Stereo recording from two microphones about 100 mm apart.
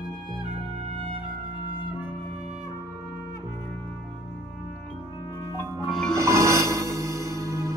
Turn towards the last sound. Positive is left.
turn(degrees=-30)  # may be behind; listen again after turning